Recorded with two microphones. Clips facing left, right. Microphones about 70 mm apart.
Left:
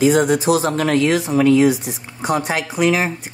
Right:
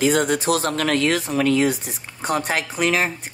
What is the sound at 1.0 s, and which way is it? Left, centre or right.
Speech, left.